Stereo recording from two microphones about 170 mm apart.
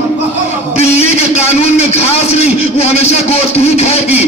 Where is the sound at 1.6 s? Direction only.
40° left (ahead or behind).